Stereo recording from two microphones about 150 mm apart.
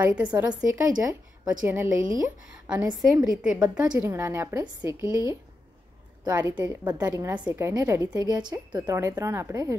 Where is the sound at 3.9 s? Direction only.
20° right (ahead or behind).